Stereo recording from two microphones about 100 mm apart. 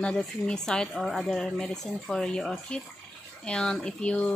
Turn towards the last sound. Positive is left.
turn(degrees=10)  # may be behind; listen again after turning